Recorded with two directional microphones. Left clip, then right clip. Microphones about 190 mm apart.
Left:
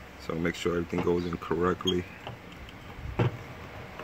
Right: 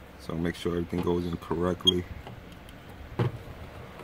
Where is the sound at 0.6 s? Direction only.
20° right (ahead or behind).